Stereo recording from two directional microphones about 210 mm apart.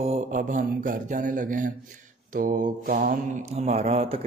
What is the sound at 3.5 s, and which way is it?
Mantra, 30° right (ahead or behind).